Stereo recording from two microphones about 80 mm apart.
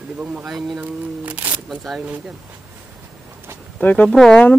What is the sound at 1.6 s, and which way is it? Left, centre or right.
Speech, centre.